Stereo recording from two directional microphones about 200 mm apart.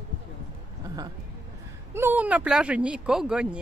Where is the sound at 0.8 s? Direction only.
20° right (ahead or behind).